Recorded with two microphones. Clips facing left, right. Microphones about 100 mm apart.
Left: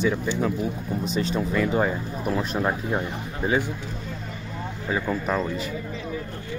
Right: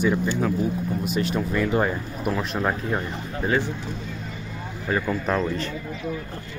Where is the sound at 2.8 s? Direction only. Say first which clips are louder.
Even; 15° left (ahead or behind).